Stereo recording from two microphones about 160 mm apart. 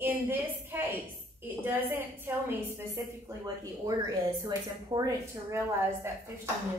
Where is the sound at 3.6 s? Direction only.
25° right (ahead or behind).